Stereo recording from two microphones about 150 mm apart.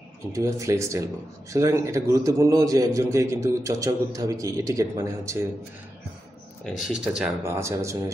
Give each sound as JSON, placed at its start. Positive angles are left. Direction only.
{"t": 0.3, "sound": "speech", "side_deg": -20}
{"t": 6.9, "sound": "speech", "side_deg": -5}
{"t": 7.4, "sound": "speech", "side_deg": -20}